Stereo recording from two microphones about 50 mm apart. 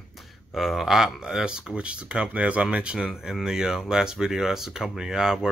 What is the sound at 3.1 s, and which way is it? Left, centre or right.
Speech, centre.